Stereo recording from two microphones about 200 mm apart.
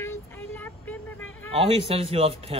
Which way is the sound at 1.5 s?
30° right (ahead or behind).